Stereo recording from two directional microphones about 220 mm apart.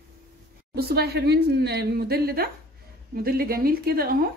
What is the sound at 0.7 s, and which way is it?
A woman's voice, 45° right (ahead or behind).